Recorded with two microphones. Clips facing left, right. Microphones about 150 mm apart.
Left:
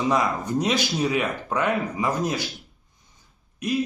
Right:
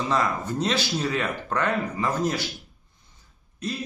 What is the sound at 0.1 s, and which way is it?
Speech, 15° left (ahead or behind).